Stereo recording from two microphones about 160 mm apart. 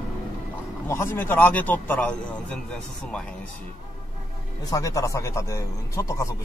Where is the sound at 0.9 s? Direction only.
15° left (ahead or behind).